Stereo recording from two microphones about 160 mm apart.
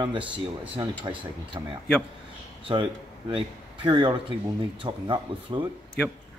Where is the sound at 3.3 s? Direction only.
30° right (ahead or behind).